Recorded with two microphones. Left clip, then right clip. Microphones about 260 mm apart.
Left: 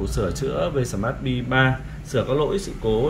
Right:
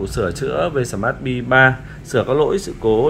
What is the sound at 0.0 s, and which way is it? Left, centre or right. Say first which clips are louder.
Speech: right 4 dB; centre.